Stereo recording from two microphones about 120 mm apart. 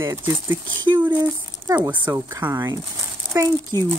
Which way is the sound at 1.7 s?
25° right (ahead or behind).